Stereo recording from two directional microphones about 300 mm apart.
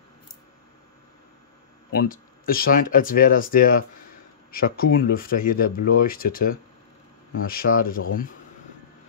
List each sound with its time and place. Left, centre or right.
1.9 s speech: left